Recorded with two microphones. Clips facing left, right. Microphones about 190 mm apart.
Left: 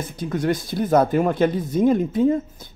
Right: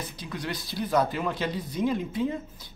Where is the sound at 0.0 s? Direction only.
50° left (ahead or behind).